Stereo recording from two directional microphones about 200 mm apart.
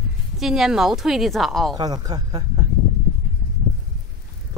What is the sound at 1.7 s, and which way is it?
Speech, 20° right (ahead or behind).